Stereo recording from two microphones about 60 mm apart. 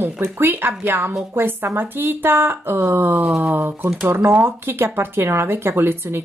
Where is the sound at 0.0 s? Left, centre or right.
Right.